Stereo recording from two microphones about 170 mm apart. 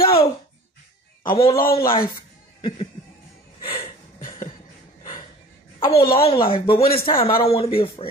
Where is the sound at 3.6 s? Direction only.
30° left (ahead or behind).